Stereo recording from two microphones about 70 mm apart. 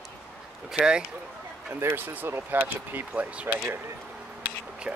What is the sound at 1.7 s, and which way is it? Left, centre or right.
Speech, right.